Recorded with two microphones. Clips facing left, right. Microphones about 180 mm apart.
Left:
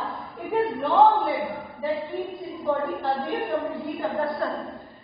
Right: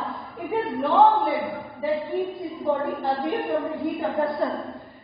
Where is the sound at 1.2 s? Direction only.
Centre (ahead or behind).